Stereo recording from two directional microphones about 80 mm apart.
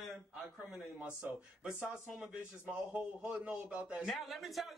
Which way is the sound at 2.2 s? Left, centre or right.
Centre.